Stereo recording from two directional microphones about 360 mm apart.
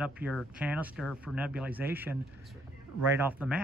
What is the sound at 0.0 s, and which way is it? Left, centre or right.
Speech, centre.